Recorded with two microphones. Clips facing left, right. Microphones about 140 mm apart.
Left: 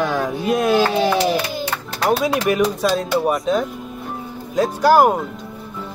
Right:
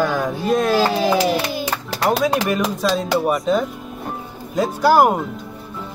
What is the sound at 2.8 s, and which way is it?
A child's voice, centre (ahead or behind).